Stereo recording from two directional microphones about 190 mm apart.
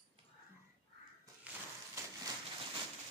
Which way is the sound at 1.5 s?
5° right (ahead or behind).